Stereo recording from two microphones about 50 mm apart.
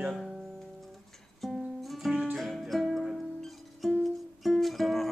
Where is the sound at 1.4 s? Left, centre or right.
Centre.